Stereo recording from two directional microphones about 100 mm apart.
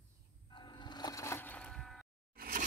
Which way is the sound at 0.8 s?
45° left (ahead or behind).